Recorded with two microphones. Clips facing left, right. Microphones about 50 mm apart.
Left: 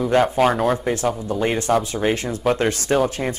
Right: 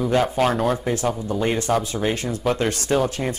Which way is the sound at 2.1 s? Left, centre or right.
Left.